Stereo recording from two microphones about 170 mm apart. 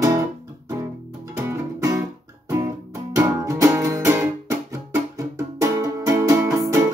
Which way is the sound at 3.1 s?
20° right (ahead or behind).